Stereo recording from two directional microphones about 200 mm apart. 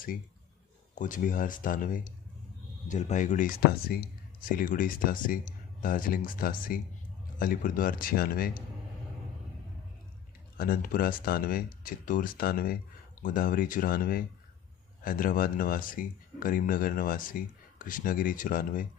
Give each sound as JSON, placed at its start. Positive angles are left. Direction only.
{"t": 0.9, "sound": "speech", "side_deg": 40}
{"t": 10.6, "sound": "speech", "side_deg": 45}